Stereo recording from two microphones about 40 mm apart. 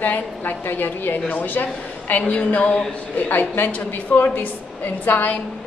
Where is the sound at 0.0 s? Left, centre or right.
Left.